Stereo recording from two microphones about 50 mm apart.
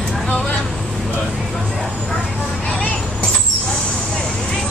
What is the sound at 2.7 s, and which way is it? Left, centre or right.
Vehicle, centre.